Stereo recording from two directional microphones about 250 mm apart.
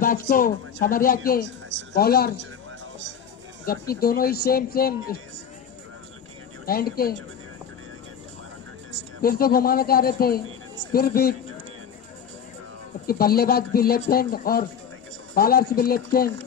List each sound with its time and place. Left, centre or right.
0.0 s speech: left
3.9 s speech: left
6.6 s speech: left
9.2 s speech: left
13.0 s speech: left